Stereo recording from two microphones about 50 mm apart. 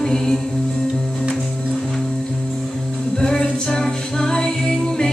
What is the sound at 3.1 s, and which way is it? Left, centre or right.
Music, centre.